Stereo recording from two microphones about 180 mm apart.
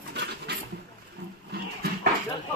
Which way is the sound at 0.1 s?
70° right (ahead or behind).